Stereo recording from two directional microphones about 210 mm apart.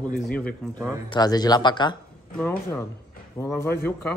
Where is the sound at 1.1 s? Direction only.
20° left (ahead or behind).